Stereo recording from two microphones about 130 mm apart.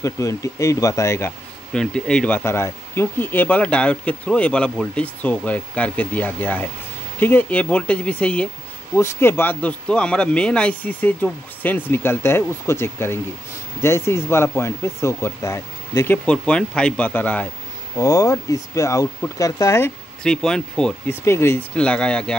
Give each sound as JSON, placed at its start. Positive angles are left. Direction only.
{"t": 0.0, "sound": "speech", "side_deg": 25}
{"t": 1.7, "sound": "speech", "side_deg": 5}
{"t": 16.3, "sound": "speech", "side_deg": 10}
{"t": 17.9, "sound": "speech", "side_deg": 25}
{"t": 20.2, "sound": "speech", "side_deg": 5}
{"t": 21.1, "sound": "speech", "side_deg": 20}
{"t": 21.7, "sound": "speech", "side_deg": 10}